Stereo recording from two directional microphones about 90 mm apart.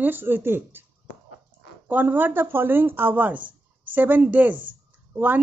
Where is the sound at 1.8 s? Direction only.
20° right (ahead or behind).